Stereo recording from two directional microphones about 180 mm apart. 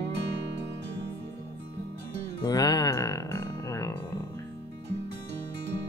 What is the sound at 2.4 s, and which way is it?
Music, 20° left (ahead or behind).